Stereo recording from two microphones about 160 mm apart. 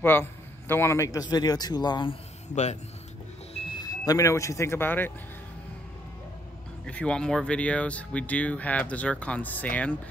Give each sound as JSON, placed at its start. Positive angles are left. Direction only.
{"t": 0.0, "sound": "a man's voice", "side_deg": 15}
{"t": 2.5, "sound": "speech", "side_deg": 45}
{"t": 3.5, "sound": "speech", "side_deg": 30}
{"t": 6.9, "sound": "speech", "side_deg": 5}